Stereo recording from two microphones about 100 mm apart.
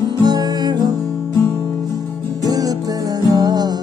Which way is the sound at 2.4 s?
40° right (ahead or behind).